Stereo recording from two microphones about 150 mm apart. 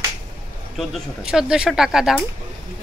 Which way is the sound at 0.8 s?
Centre (ahead or behind).